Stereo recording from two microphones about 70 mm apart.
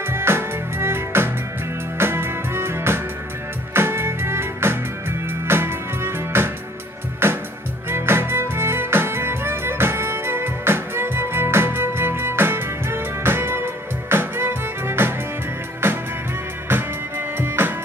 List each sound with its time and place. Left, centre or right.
0.0 s music: right
17.4 s music: right